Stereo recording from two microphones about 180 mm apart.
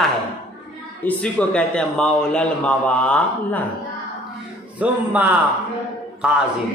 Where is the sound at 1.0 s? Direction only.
5° left (ahead or behind).